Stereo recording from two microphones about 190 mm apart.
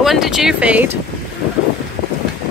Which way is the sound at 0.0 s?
Centre (ahead or behind).